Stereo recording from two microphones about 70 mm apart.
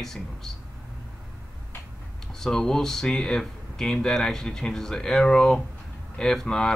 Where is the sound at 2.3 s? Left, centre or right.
Centre.